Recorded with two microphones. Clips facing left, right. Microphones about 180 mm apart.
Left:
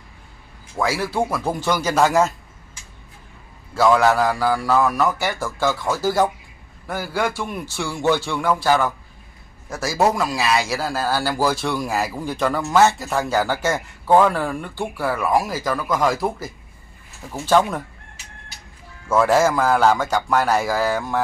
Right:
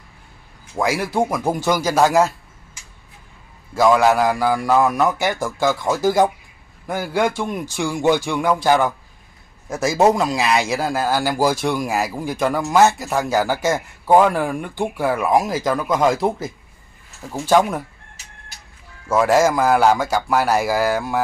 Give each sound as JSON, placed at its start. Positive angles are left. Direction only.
{"t": 0.7, "sound": "a man's voice", "side_deg": -15}
{"t": 3.7, "sound": "a man's voice", "side_deg": -15}
{"t": 19.0, "sound": "a man's voice", "side_deg": -10}